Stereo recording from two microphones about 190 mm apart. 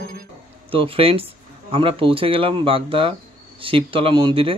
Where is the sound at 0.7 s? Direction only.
30° right (ahead or behind).